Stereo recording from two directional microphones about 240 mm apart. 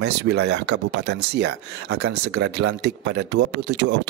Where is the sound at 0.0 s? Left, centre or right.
Right.